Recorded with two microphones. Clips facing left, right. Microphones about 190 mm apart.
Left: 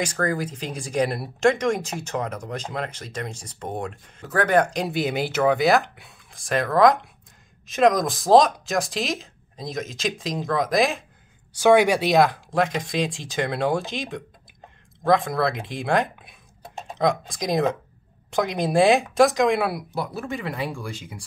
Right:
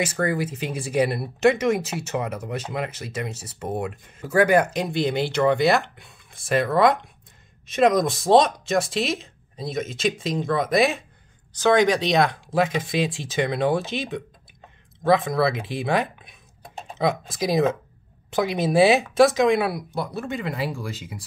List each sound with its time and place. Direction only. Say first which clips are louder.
0.0 s speech: right 1 dB; 5° right (ahead or behind)
11.5 s speech: left 2 dB; 10° left (ahead or behind)